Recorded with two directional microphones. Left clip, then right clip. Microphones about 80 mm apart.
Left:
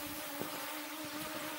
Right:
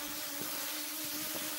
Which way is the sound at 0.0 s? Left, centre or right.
Right.